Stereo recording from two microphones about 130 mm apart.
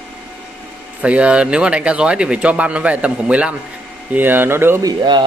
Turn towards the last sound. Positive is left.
turn(degrees=-35)  # may be behind; listen again after turning